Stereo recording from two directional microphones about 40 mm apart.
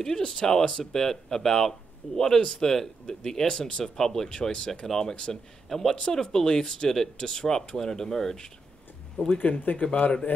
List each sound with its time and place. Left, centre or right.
0.0 s speech: centre
3.8 s speech: centre
4.3 s speech: left
5.7 s speech: centre
5.9 s speech: centre
9.4 s speech: left